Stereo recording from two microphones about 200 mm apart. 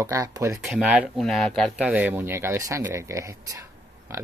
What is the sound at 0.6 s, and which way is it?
Speech, 5° right (ahead or behind).